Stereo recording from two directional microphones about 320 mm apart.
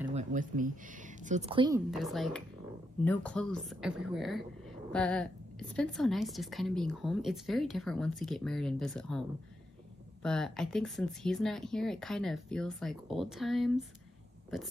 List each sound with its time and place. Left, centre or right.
0.1 s speech: right
1.9 s speech: centre
10.2 s speech: centre